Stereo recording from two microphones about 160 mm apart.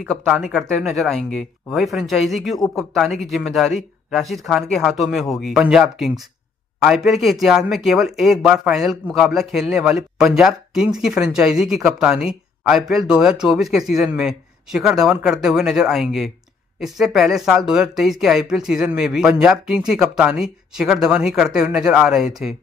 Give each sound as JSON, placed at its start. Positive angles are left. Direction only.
{"t": 0.0, "sound": "speech", "side_deg": 0}